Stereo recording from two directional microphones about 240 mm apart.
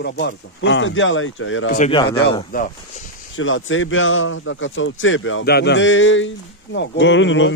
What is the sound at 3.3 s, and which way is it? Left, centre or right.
A man's voice, left.